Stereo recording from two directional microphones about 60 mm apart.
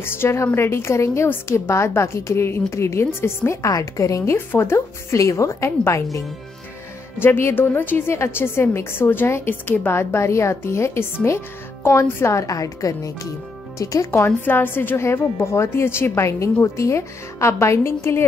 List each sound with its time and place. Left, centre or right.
0.0 s a woman's voice: left
3.6 s a woman's voice: left
4.4 s a woman's voice: left
7.2 s a woman's voice: left
8.1 s a woman's voice: left
14.1 s a woman's voice: left